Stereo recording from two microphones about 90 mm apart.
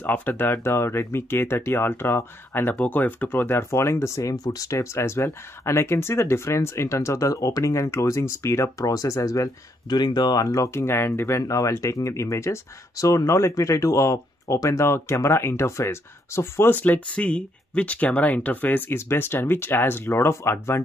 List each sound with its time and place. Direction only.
0.0 s speech: 20° left (ahead or behind)